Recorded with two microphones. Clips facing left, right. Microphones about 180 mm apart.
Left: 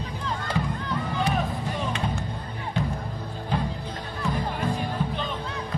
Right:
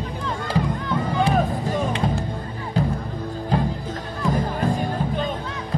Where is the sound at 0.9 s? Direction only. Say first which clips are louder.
Right 6 dB; 45° right (ahead or behind).